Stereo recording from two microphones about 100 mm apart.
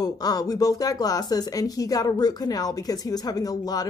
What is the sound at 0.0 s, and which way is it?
Speech, 40° left (ahead or behind).